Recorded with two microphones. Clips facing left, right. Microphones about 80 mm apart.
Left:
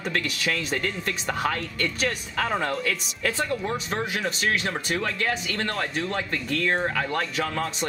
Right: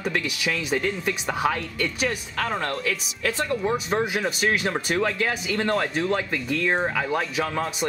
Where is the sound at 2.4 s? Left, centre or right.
Centre.